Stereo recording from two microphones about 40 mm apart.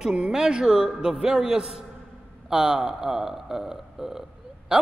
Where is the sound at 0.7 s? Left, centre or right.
Centre.